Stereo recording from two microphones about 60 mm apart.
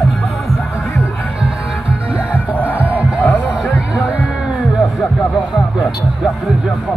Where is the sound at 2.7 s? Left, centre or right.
Right.